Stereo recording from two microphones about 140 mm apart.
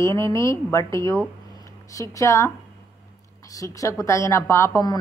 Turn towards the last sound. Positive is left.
turn(degrees=25)  # may be behind; listen again after turning